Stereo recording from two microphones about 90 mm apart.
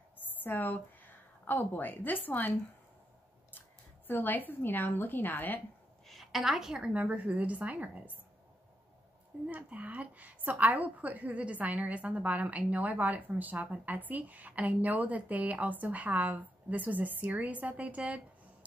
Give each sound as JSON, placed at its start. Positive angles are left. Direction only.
{"t": 0.4, "sound": "a woman's voice", "side_deg": 20}
{"t": 4.1, "sound": "a woman's voice", "side_deg": 20}
{"t": 6.0, "sound": "a woman's voice", "side_deg": 0}
{"t": 9.5, "sound": "a woman's voice", "side_deg": -15}